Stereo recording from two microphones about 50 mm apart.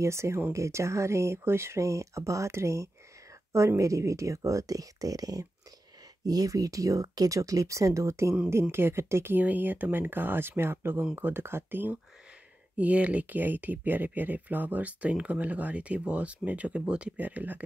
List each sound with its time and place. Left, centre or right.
0.0 s speech: right
6.9 s speech: right
8.7 s speech: right
9.3 s speech: right
12.7 s speech: right
17.2 s speech: right